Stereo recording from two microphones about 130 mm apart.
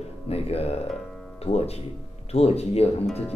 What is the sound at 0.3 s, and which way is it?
Speech, 50° left (ahead or behind).